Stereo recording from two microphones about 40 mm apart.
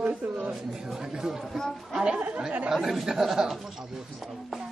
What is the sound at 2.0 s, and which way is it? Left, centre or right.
Chatter, right.